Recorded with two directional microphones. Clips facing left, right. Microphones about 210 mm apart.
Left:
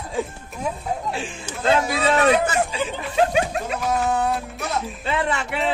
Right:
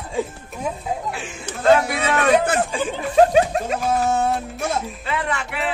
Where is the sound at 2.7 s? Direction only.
50° right (ahead or behind).